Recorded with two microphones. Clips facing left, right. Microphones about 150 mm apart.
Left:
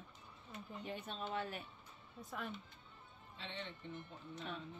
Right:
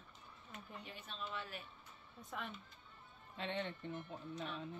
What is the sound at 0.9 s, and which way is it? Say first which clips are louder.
Speech: left 6 dB; 45° left (ahead or behind).